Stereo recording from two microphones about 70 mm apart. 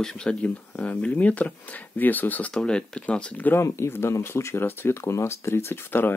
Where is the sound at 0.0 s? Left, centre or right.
Centre.